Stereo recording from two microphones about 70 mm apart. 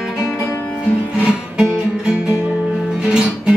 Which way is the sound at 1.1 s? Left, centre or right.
Centre.